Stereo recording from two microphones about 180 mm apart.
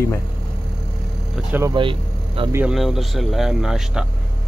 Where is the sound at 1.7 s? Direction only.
30° right (ahead or behind).